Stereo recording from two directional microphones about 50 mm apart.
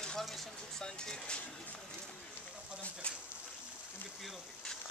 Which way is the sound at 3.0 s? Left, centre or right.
Left.